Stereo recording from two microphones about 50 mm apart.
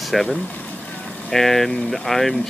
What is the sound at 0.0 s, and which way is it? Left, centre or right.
Speech, centre.